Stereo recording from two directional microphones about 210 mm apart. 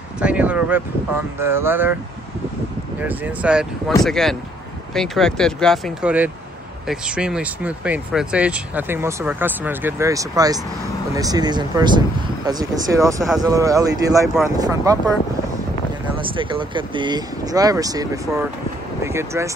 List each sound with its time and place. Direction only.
0.2 s speech: 5° right (ahead or behind)
3.0 s speech: 5° right (ahead or behind)
16.2 s speech: 25° right (ahead or behind)